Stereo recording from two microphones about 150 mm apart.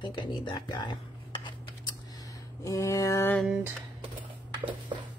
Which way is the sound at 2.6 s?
20° left (ahead or behind).